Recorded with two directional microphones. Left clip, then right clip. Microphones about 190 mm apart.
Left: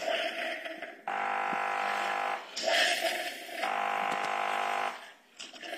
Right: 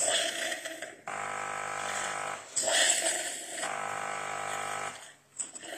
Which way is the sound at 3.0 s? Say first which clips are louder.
Left 1 dB; 30° right (ahead or behind).